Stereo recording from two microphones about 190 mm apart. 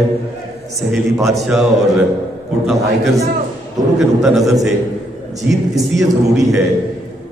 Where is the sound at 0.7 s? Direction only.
Centre (ahead or behind).